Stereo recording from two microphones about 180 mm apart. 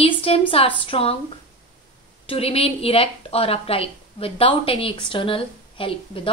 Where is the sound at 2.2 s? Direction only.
35° left (ahead or behind).